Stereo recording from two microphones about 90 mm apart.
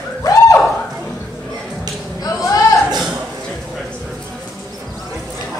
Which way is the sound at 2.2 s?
40° left (ahead or behind).